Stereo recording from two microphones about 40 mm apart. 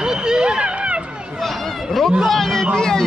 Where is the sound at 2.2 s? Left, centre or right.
Centre.